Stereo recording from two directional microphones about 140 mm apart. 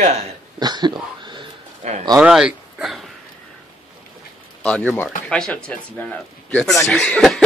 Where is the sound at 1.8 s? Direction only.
50° right (ahead or behind).